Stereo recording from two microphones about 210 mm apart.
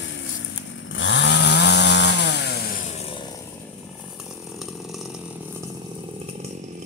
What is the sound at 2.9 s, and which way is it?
Vehicle, 30° left (ahead or behind).